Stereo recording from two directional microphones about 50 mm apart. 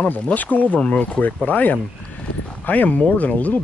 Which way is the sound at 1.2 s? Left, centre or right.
Left.